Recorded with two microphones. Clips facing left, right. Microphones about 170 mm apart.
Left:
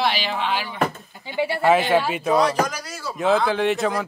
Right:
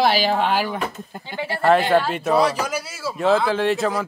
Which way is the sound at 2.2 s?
5° right (ahead or behind).